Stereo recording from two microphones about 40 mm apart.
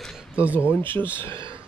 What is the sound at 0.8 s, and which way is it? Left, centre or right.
Speech, left.